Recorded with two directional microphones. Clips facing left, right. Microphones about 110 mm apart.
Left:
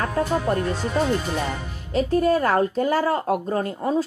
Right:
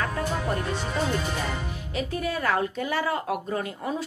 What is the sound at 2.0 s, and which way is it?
Speech, 40° left (ahead or behind).